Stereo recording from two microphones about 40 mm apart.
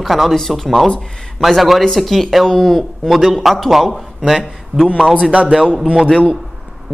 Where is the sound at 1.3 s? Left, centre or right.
Centre.